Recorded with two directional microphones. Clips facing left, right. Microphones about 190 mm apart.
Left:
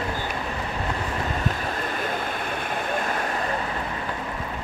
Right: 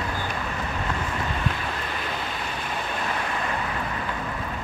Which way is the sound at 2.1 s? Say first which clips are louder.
Left 3 dB; 50° left (ahead or behind).